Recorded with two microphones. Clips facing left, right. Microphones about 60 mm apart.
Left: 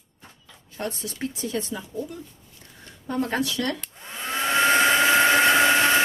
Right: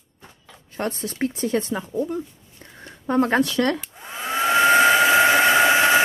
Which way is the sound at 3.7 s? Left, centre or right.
Centre.